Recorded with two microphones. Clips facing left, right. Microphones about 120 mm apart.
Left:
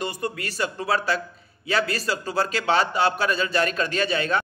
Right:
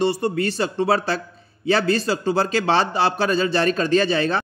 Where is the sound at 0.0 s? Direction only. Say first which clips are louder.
Right 9 dB; 30° right (ahead or behind).